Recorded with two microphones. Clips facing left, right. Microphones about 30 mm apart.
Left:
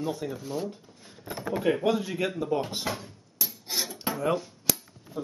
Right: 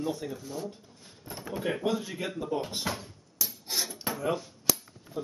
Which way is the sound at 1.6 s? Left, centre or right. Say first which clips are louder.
Left 4 dB; centre.